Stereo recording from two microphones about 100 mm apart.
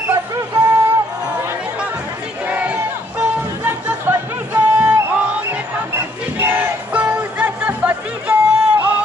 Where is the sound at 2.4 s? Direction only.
15° right (ahead or behind).